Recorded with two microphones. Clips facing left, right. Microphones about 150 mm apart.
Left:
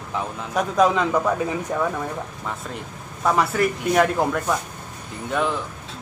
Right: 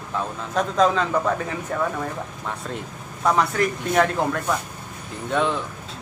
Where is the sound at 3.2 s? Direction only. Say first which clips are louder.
Even; 5° left (ahead or behind).